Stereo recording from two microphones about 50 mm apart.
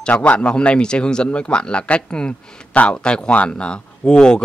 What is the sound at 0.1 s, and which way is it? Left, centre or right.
Speech, left.